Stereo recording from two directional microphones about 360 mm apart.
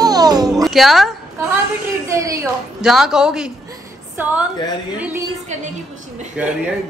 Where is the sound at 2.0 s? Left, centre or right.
Centre.